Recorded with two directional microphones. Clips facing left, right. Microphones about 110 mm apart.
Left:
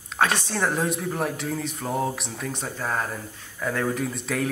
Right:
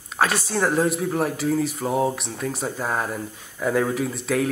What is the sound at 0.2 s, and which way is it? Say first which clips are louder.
Speech: right 2 dB; 5° right (ahead or behind).